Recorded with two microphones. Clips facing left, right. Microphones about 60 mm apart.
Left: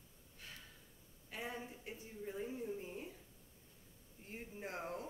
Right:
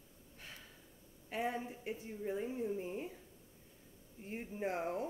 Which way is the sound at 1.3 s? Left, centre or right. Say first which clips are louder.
Right 7 dB; right.